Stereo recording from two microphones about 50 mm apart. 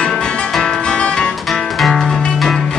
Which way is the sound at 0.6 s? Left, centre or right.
Centre.